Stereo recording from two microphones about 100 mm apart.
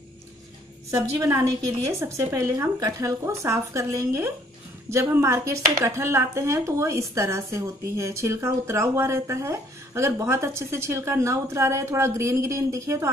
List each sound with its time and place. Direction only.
1.1 s a woman's voice: 35° right (ahead or behind)